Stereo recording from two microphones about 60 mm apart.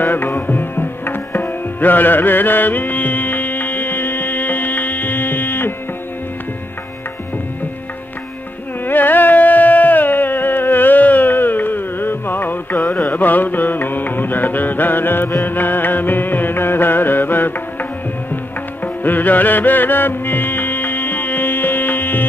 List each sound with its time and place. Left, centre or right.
0.0 s tabla: left
8.8 s music: left
12.8 s music: centre
13.1 s music: left
19.0 s music: left